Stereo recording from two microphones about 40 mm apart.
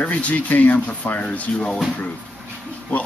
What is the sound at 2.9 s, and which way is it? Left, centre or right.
Speech, left.